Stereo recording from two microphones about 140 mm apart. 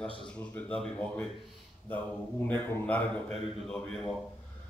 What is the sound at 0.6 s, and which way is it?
Speech, 10° left (ahead or behind).